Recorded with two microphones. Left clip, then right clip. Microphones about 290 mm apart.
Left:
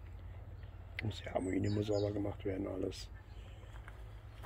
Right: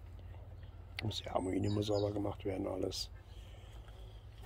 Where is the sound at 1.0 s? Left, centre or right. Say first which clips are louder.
Right 2 dB; centre.